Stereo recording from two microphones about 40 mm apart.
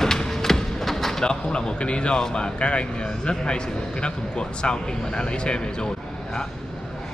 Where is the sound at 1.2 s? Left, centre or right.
Centre.